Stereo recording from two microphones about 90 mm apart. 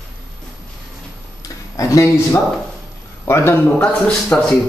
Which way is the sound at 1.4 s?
40° left (ahead or behind).